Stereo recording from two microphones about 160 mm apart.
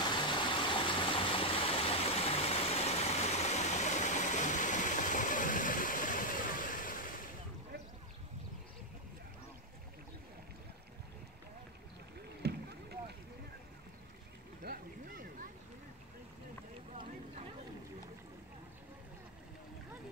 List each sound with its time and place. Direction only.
0.0 s stream: 30° left (ahead or behind); by 7.1 s 60° left (ahead or behind)
12.4 s rowboat: 90° right
14.6 s boat: 65° right (ahead or behind)